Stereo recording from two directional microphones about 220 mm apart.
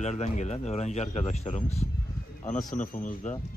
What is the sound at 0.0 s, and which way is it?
Speech, 30° left (ahead or behind).